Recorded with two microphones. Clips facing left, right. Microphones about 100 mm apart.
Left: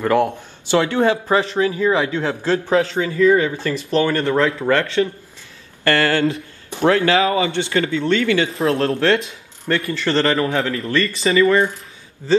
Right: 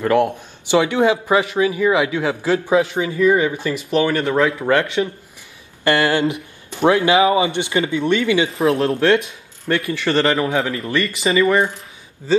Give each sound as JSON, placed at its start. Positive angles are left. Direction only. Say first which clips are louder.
{"t": 0.4, "sound": "speech", "louder": "right 1 dB", "side_deg": -15}